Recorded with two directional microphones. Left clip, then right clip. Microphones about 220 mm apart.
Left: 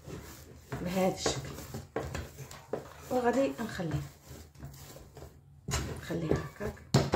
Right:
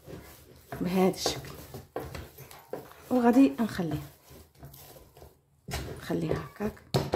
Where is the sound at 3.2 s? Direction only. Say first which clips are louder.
Right 6 dB; 50° right (ahead or behind).